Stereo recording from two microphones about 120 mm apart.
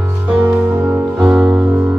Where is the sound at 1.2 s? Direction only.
10° right (ahead or behind).